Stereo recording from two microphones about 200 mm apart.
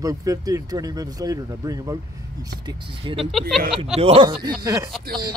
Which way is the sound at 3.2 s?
Centre (ahead or behind).